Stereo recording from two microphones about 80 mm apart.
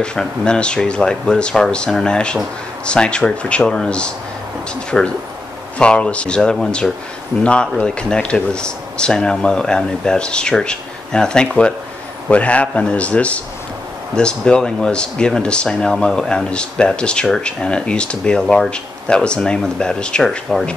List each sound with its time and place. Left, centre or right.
0.0 s speech: centre